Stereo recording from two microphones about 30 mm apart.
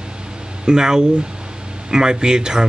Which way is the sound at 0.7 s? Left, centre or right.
Right.